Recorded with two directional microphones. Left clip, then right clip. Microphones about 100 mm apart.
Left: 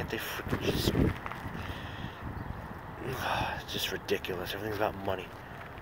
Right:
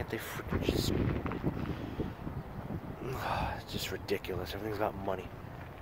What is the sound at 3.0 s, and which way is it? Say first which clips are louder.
Speech: left 3 dB; 35° right (ahead or behind).